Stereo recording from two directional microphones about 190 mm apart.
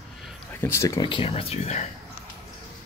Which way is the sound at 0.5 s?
15° left (ahead or behind).